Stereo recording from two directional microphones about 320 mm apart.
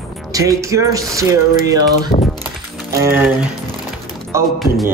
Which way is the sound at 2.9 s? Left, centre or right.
Centre.